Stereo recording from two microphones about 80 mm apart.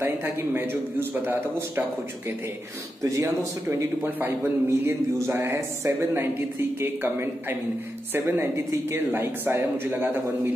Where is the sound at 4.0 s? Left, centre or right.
Right.